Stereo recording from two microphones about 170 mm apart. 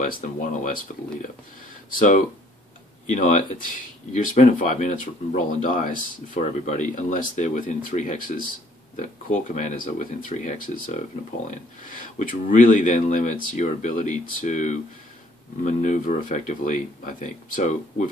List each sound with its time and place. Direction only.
0.0 s speech: 50° left (ahead or behind)
2.0 s speech: 55° left (ahead or behind)